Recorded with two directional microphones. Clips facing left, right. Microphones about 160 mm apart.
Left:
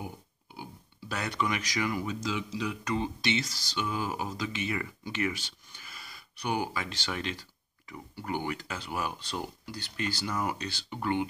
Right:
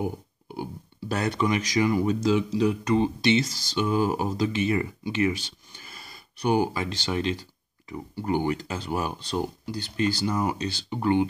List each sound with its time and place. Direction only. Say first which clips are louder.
1.0 s speech: right 7 dB; 35° right (ahead or behind)
2.0 s speech: right 11 dB; 40° right (ahead or behind)
2.8 s speech: right 8 dB; 25° right (ahead or behind)
5.0 s a sound: right 7 dB; 20° right (ahead or behind)
5.9 s speech: right 2 dB; 35° right (ahead or behind)